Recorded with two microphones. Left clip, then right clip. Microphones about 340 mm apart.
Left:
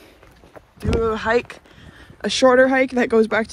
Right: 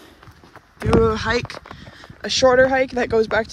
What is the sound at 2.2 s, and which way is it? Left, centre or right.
Speech, centre.